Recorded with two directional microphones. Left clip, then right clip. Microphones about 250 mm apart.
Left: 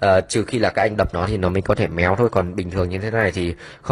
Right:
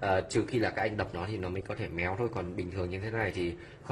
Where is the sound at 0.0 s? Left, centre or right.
Left.